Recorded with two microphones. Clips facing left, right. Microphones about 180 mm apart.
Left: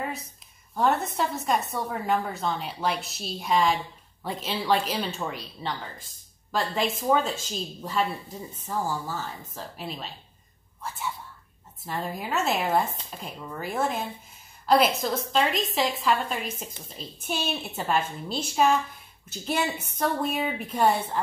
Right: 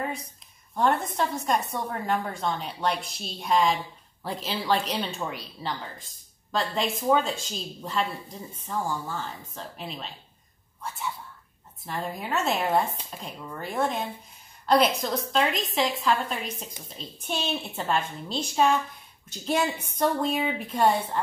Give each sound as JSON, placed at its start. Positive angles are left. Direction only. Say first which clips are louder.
{"t": 0.0, "sound": "a sound", "louder": "right 1 dB", "side_deg": 0}
{"t": 0.7, "sound": "a woman's voice", "louder": "even", "side_deg": 0}
{"t": 11.8, "sound": "a woman's voice", "louder": "left 1 dB", "side_deg": 0}